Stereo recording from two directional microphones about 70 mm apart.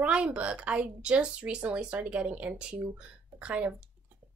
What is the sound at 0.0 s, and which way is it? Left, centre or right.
A woman's voice, centre.